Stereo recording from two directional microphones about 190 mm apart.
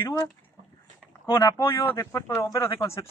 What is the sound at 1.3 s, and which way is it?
Speech, 15° left (ahead or behind).